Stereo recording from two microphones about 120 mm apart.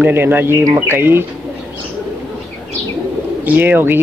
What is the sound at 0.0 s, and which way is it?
Speech, 15° right (ahead or behind).